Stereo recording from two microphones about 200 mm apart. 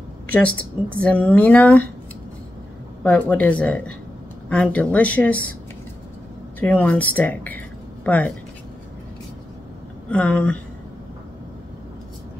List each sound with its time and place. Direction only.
0.3 s speech: 5° left (ahead or behind)
3.0 s speech: 10° left (ahead or behind)
6.6 s speech: 5° left (ahead or behind)
10.1 s speech: 5° left (ahead or behind)